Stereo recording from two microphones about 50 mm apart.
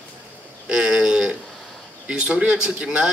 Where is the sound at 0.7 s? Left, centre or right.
Centre.